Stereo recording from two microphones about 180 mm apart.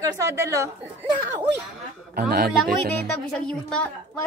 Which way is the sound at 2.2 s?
60° right (ahead or behind).